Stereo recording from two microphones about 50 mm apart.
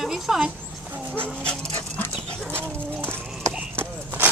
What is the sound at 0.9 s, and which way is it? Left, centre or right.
Dog, right.